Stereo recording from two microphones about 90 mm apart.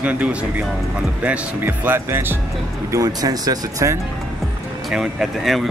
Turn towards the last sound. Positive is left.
turn(degrees=0)  # may be behind; listen again after turning